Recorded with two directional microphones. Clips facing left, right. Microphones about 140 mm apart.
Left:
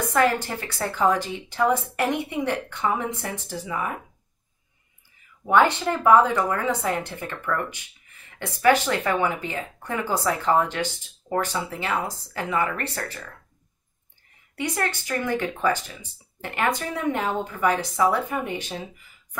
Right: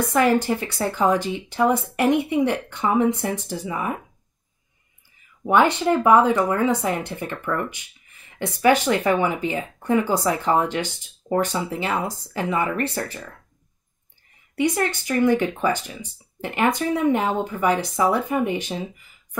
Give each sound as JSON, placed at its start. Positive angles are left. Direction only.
{"t": 0.1, "sound": "speech", "side_deg": -15}
{"t": 5.5, "sound": "speech", "side_deg": -15}
{"t": 14.5, "sound": "speech", "side_deg": -15}